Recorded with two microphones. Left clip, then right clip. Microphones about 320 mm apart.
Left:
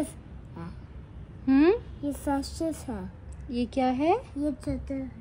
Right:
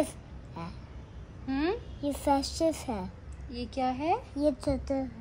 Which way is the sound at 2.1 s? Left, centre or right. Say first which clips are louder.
Right 3 dB; centre.